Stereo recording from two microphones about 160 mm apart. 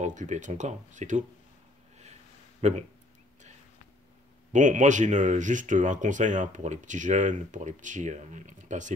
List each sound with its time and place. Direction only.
0.0 s speech: 50° right (ahead or behind)
2.6 s speech: 45° right (ahead or behind)
4.5 s speech: 50° right (ahead or behind)